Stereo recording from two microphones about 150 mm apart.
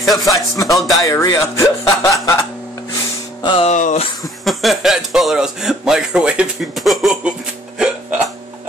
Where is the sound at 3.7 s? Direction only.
55° left (ahead or behind).